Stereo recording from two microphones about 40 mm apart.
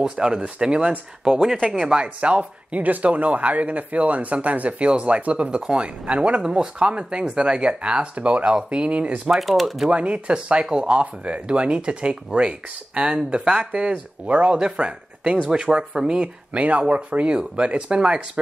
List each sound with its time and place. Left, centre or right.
0.0 s speech: centre
2.1 s speech: right
6.4 s speech: right
9.4 s speech: centre
9.8 s speech: right
16.5 s speech: right